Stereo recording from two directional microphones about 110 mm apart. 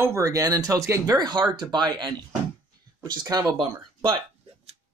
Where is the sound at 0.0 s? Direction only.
30° right (ahead or behind).